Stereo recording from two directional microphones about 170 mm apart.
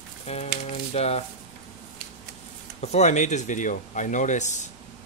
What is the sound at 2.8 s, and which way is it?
Speech, 40° left (ahead or behind).